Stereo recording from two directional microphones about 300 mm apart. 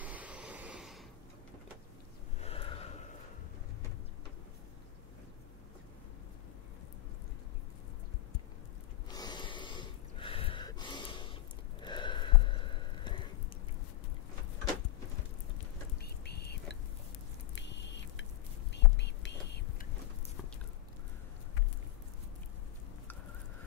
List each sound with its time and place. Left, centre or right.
0.0 s vehicle: centre
2.4 s gasp: centre
9.1 s snort: centre
11.8 s a sound: centre
16.0 s a sound: left
17.6 s biting: left
18.7 s whispering: left